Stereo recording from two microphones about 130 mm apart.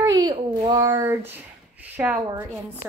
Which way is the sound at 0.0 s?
35° right (ahead or behind).